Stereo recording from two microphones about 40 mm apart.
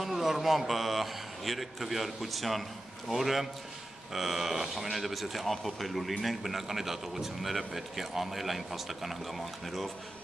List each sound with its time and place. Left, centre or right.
0.0 s a man's voice: centre